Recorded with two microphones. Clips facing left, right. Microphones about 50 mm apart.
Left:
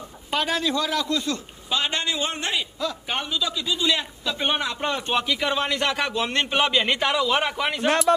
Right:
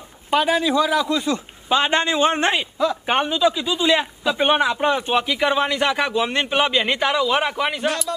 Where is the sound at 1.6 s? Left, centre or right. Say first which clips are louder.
Right 7 dB; right; by 7.9 s centre.